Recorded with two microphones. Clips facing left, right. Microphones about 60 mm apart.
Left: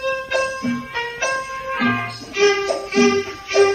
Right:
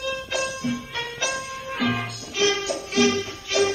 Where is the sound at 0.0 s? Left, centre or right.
Left.